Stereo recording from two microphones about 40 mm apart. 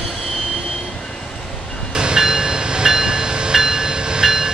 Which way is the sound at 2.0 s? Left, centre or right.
Centre.